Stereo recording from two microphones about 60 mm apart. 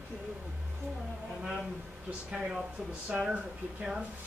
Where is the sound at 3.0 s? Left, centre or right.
Centre.